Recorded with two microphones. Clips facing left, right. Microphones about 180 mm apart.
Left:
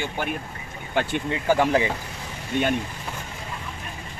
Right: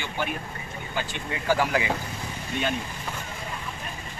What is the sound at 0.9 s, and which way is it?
Speech, 60° left (ahead or behind).